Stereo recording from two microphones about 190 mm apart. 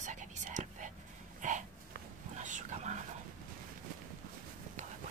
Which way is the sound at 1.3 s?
40° right (ahead or behind).